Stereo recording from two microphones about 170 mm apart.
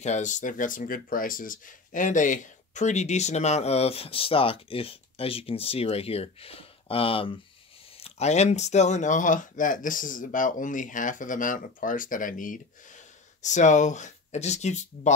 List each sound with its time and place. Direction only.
0.0 s speech: 45° left (ahead or behind)